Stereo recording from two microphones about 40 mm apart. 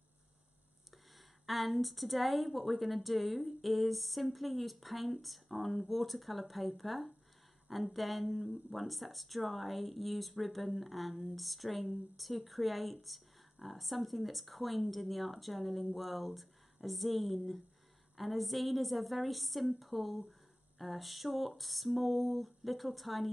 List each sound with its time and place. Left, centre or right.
1.4 s a woman's voice: centre